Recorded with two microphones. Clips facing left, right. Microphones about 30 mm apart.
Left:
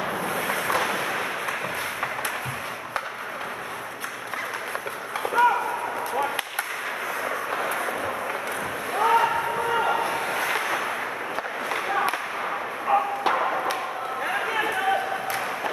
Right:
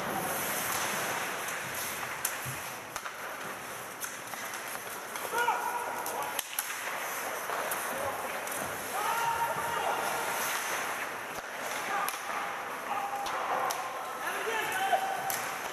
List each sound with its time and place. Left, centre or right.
0.5 s wind noise: left
5.3 s chop: left
8.9 s a sound: left
14.2 s run: left